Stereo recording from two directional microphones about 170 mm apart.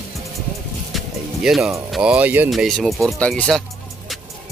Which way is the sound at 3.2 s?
5° left (ahead or behind).